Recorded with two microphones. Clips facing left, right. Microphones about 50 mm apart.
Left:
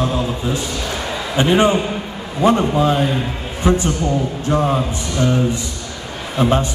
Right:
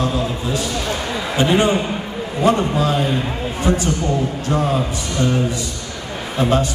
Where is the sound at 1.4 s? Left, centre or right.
Left.